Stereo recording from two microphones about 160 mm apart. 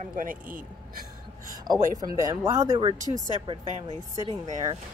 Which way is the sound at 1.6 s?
25° right (ahead or behind).